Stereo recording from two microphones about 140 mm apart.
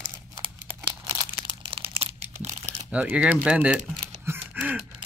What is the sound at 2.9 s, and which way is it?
Speech, 10° right (ahead or behind).